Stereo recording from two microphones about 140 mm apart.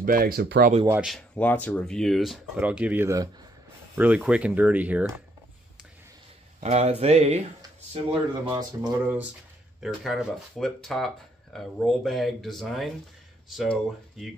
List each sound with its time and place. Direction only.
0.0 s speech: 90° right
1.0 s speech: centre (ahead or behind)
6.6 s speech: 50° right (ahead or behind)
8.5 s speech: 25° right (ahead or behind)
8.9 s speech: 10° right (ahead or behind)
9.8 s speech: centre (ahead or behind)